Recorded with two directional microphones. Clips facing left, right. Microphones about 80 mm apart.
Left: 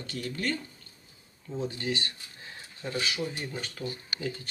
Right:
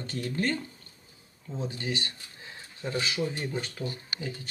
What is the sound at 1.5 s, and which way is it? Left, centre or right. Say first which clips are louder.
Speech: left 2 dB; centre.